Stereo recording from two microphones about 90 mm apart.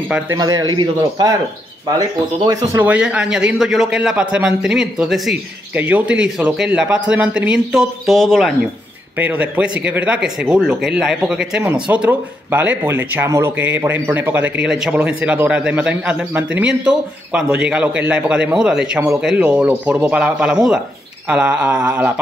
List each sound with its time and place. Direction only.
0.4 s a man's voice: 45° right (ahead or behind)
2.8 s a man's voice: 15° right (ahead or behind)
5.8 s a man's voice: 15° right (ahead or behind); by 8.5 s centre (ahead or behind)
9.2 s a man's voice: 15° right (ahead or behind)
14.6 s a man's voice: 10° right (ahead or behind)